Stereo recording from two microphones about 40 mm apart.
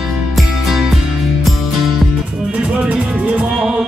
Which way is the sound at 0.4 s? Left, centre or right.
Centre.